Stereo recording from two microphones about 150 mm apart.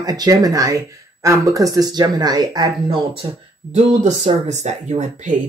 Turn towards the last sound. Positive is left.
turn(degrees=-55)  # may be behind; listen again after turning